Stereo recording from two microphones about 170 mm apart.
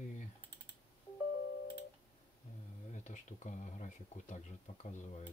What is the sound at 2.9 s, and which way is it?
Speech, 45° left (ahead or behind).